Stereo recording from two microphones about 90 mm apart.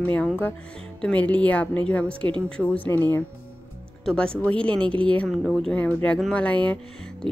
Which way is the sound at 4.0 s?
10° left (ahead or behind).